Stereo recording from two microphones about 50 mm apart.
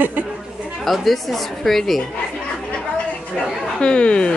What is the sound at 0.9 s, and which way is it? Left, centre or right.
A woman's voice, centre.